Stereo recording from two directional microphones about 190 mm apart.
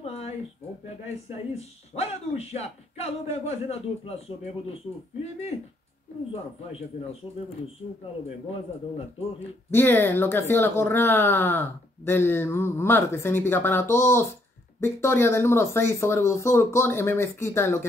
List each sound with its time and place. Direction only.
0.0 s a sound: 35° left (ahead or behind)
1.6 s speech: 35° left (ahead or behind)
9.7 s speech: 10° left (ahead or behind)